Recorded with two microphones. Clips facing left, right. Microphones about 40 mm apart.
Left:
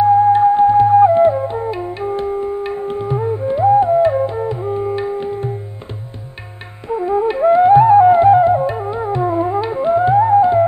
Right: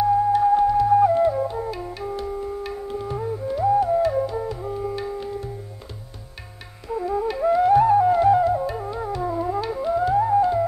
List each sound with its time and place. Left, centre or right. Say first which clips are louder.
0.0 s music: left 8 dB; left
6.9 s flute: left 8 dB; left